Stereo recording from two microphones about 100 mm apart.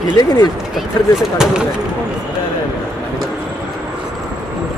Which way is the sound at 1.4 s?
5° right (ahead or behind).